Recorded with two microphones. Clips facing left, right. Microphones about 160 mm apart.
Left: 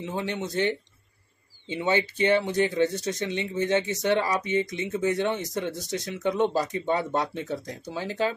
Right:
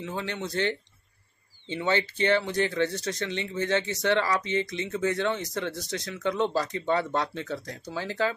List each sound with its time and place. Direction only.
0.0 s speech: 20° left (ahead or behind)